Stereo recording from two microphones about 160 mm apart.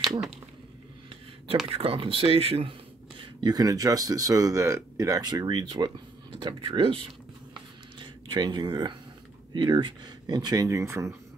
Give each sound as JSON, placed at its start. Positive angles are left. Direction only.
{"t": 1.7, "sound": "speech", "side_deg": -35}